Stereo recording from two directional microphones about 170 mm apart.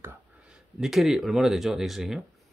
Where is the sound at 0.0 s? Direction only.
15° right (ahead or behind).